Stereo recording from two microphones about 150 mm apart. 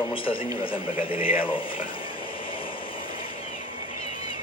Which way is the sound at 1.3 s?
35° left (ahead or behind).